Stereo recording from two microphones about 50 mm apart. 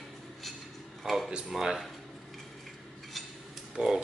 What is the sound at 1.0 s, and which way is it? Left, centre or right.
Speech, centre.